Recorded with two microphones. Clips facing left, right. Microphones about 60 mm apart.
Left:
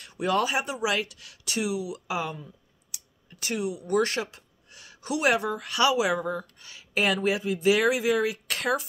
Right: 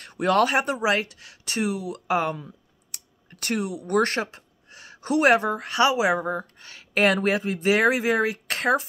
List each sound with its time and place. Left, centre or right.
0.0 s speech: right
0.8 s a woman's voice: right
2.3 s clicking: right
4.1 s a woman's voice: right